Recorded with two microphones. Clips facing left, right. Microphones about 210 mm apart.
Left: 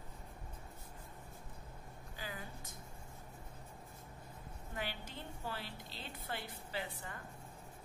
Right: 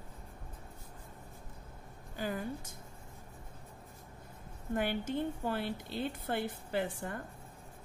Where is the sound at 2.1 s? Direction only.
45° right (ahead or behind).